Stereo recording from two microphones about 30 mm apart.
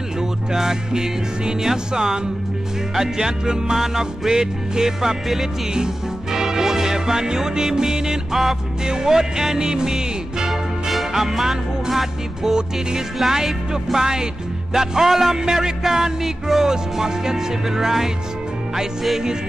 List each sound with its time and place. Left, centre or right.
0.2 s music: centre
6.3 s music: centre
8.8 s music: right
10.5 s music: centre